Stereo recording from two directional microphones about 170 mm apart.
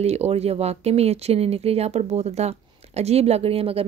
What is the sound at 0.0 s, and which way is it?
A woman's voice, 40° right (ahead or behind).